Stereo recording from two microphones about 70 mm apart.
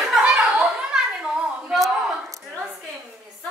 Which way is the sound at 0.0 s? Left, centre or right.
Centre.